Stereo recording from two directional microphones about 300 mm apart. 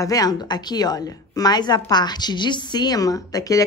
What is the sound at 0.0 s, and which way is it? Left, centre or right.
Speech, centre.